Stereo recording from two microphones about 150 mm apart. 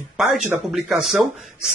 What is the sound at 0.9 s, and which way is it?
Speech, 5° right (ahead or behind).